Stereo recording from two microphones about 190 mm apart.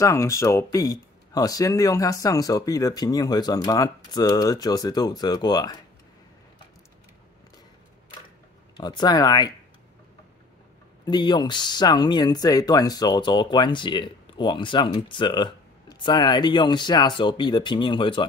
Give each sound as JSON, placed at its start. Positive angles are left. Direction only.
{"t": 0.0, "sound": "speech", "side_deg": 15}
{"t": 8.7, "sound": "speech", "side_deg": 20}
{"t": 11.1, "sound": "speech", "side_deg": 20}